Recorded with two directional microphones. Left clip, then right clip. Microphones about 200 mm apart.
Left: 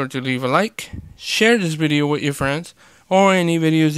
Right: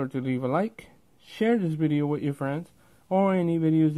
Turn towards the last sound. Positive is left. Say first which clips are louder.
# left 7 dB
turn(degrees=25)  # may be behind; listen again after turning